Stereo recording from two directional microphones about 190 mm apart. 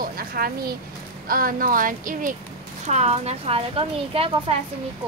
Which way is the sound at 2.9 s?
35° right (ahead or behind).